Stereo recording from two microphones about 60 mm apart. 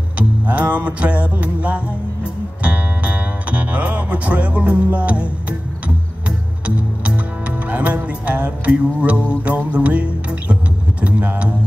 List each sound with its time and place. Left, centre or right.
0.2 s music: right
7.7 s music: right